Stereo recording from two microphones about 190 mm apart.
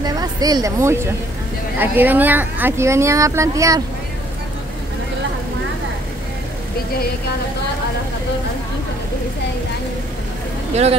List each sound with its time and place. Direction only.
0.0 s a sound: 20° right (ahead or behind)
1.8 s speech: 10° right (ahead or behind)
10.7 s speech: 35° right (ahead or behind)